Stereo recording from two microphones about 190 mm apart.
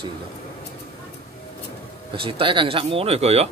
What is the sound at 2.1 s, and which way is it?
Speech, 25° right (ahead or behind).